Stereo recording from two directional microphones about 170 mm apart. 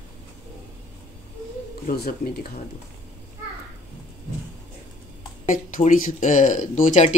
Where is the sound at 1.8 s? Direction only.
65° left (ahead or behind).